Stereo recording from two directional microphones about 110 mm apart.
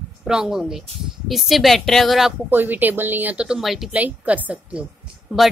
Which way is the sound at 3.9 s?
15° right (ahead or behind).